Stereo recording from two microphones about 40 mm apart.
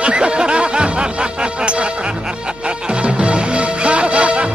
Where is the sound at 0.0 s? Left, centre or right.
Right.